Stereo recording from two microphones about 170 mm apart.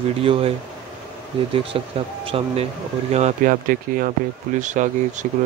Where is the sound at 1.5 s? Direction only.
35° right (ahead or behind).